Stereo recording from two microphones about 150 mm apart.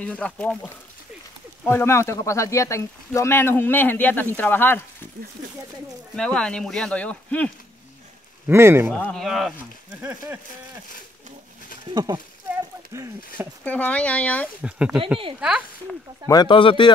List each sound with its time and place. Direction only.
0.0 s speech: 10° left (ahead or behind)
6.1 s speech: 5° left (ahead or behind)
8.5 s speech: 15° right (ahead or behind)
8.9 s speech: 5° left (ahead or behind)
9.9 s speech: 10° right (ahead or behind)
11.9 s speech: 30° right (ahead or behind)
13.7 s speech: 10° left (ahead or behind)
14.6 s speech: 5° right (ahead or behind)
16.3 s speech: 30° left (ahead or behind)